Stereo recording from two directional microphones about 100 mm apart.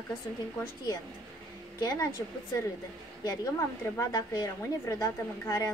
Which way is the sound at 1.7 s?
35° left (ahead or behind).